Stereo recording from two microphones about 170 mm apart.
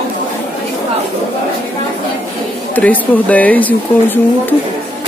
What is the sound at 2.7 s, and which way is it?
Speech, 10° left (ahead or behind).